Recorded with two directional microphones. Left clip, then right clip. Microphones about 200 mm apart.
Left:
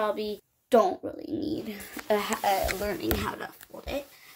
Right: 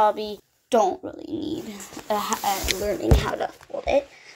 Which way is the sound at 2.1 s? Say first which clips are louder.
Right 2 dB; 10° left (ahead or behind).